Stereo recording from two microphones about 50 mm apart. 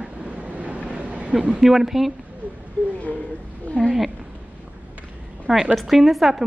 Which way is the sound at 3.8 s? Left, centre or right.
Left.